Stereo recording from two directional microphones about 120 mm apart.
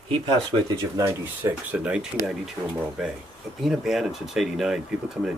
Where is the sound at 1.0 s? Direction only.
20° right (ahead or behind).